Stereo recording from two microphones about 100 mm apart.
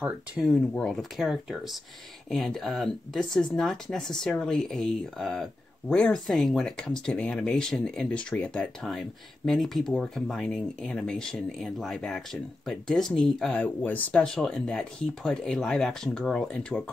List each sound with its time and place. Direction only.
0.4 s speech: 5° left (ahead or behind)
13.6 s speech: 15° left (ahead or behind)
14.2 s speech: 5° left (ahead or behind)